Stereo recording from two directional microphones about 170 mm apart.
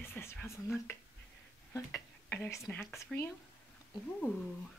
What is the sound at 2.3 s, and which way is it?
Speech, 10° left (ahead or behind).